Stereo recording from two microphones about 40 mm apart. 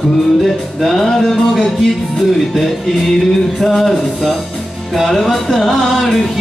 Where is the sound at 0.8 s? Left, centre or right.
Centre.